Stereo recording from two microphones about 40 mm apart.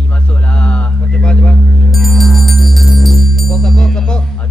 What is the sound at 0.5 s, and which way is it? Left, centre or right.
Mantra, left.